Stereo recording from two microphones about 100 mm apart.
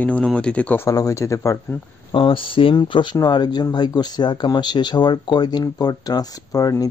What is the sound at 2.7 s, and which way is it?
Speech, 50° left (ahead or behind).